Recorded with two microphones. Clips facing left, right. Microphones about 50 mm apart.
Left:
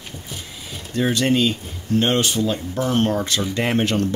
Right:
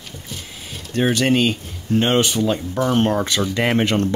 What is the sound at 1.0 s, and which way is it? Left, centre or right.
Speech, right.